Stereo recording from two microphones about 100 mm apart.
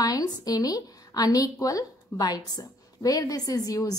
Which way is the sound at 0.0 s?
40° left (ahead or behind).